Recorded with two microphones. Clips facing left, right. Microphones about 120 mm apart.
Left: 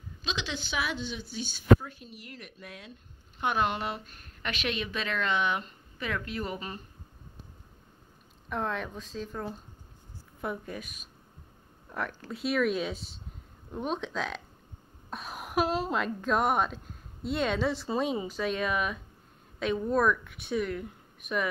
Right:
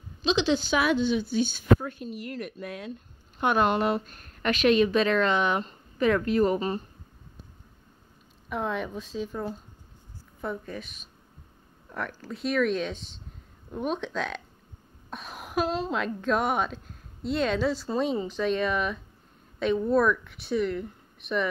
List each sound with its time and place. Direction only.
0.2 s a woman's voice: 30° right (ahead or behind)
0.7 s a woman's voice: 60° right (ahead or behind); by 6.8 s 35° right (ahead or behind)
8.5 s speech: 5° right (ahead or behind)
10.4 s a woman's voice: 10° left (ahead or behind)